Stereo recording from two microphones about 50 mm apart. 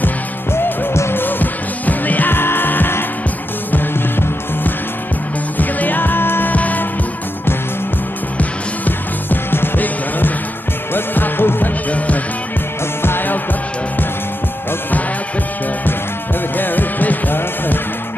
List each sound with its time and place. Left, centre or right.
0.5 s music: left
5.6 s music: left
6.5 s music: left
8.4 s music: left
13.0 s music: left
16.5 s music: left